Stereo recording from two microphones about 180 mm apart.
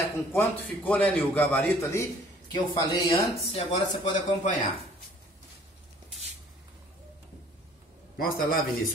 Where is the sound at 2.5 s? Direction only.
25° left (ahead or behind).